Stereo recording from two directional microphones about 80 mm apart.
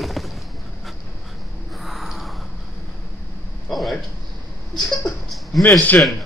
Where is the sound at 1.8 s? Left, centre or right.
Centre.